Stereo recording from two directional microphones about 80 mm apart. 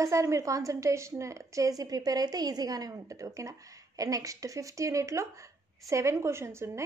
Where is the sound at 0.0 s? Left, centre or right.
Right.